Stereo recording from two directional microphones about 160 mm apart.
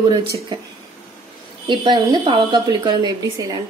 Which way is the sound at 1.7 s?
30° right (ahead or behind).